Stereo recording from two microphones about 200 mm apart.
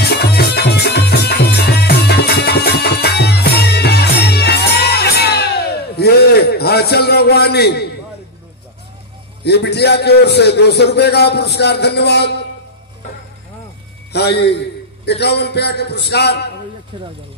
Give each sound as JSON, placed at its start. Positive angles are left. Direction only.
{"t": 0.0, "sound": "music", "side_deg": 55}
{"t": 9.4, "sound": "a man's voice", "side_deg": 55}
{"t": 14.1, "sound": "a man's voice", "side_deg": 55}
{"t": 16.9, "sound": "speech", "side_deg": -25}